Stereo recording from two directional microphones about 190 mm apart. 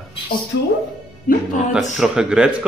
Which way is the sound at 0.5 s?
65° left (ahead or behind).